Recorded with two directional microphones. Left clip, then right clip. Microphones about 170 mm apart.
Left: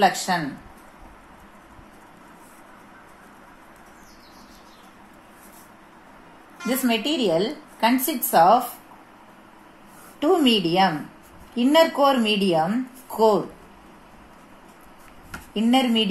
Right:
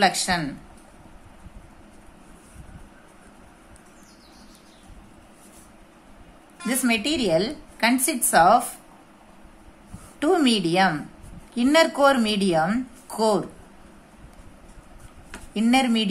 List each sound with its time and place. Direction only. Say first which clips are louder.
0.0 s a woman's voice: left 1 dB; 30° right (ahead or behind)
6.7 s a woman's voice: even; 35° right (ahead or behind)
10.1 s speech: left 1 dB; 25° right (ahead or behind)
15.5 s speech: left 1 dB; 30° right (ahead or behind)